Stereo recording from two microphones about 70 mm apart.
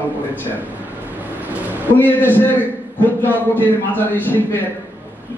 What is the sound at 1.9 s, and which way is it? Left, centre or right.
A man's voice, left.